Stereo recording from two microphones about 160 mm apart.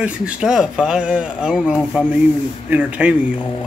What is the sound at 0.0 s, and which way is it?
Speech, 5° right (ahead or behind).